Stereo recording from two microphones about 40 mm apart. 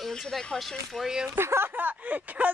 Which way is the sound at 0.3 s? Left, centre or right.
Centre.